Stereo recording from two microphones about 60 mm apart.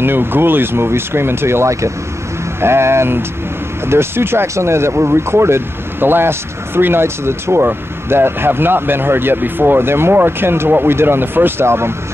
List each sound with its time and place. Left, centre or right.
0.0 s speech: right